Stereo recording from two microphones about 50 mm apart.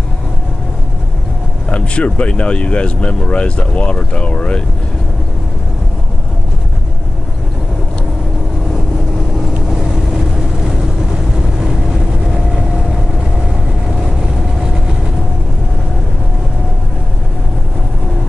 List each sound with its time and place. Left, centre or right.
1.7 s speech: left